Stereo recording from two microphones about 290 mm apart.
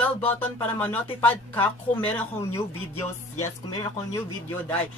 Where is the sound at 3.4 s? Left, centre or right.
Centre.